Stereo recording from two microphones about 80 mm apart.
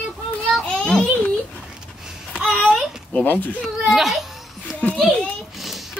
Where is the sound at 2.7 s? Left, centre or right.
Centre.